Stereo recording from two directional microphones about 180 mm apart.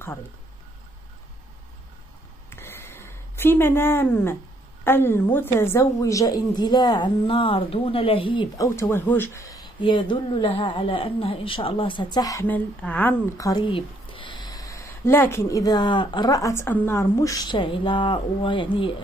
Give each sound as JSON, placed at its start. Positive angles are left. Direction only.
{"t": 2.5, "sound": "a sound", "side_deg": 10}
{"t": 4.8, "sound": "speech", "side_deg": 10}
{"t": 8.6, "sound": "speech", "side_deg": 15}
{"t": 13.4, "sound": "speech", "side_deg": 20}